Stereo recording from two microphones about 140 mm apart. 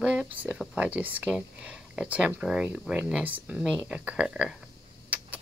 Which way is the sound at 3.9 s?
10° right (ahead or behind).